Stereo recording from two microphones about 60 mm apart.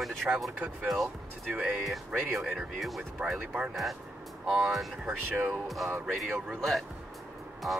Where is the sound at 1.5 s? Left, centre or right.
Centre.